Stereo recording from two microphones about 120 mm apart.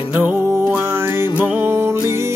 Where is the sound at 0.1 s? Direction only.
15° right (ahead or behind).